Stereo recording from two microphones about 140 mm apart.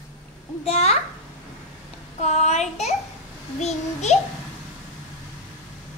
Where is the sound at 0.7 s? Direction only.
45° left (ahead or behind).